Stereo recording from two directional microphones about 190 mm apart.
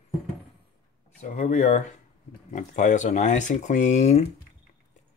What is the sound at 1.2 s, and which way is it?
Speech, 40° left (ahead or behind).